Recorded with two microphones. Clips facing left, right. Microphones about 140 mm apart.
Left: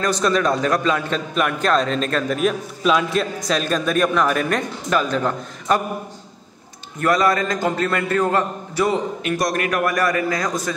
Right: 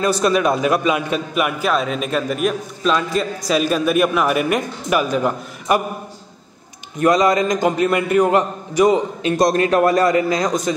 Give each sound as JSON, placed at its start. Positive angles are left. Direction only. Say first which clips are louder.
{"t": 0.0, "sound": "a man's voice", "louder": "right 2 dB", "side_deg": -10}
{"t": 7.0, "sound": "a man's voice", "louder": "right 3 dB", "side_deg": -20}